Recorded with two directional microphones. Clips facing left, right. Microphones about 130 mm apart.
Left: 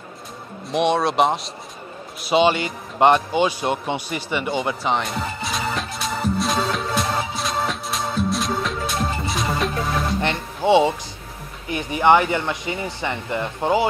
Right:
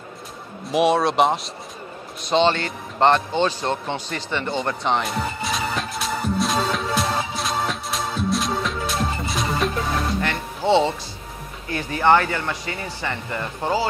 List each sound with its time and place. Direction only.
0.7 s speech: centre (ahead or behind)
2.2 s music: 10° left (ahead or behind)
10.2 s speech: 15° left (ahead or behind)